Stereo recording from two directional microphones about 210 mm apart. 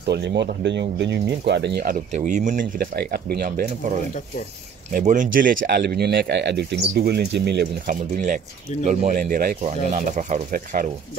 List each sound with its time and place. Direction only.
0.0 s speech: 50° right (ahead or behind)
2.1 s speech: 35° right (ahead or behind)
2.6 s speech: 50° right (ahead or behind)